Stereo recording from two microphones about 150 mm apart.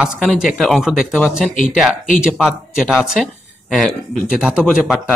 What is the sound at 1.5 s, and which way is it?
Speech, 55° left (ahead or behind).